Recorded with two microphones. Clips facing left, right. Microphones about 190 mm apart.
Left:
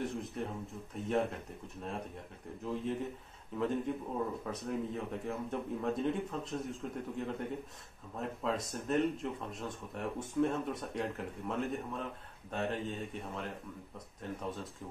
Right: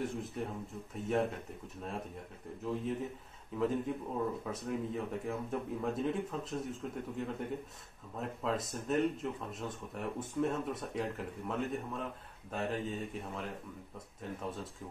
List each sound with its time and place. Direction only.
0.0 s a man's voice: centre (ahead or behind)